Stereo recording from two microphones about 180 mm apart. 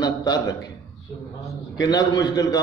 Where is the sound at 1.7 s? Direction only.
20° left (ahead or behind).